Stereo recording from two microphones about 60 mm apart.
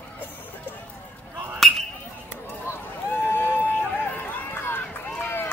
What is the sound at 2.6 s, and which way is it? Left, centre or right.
Run, left.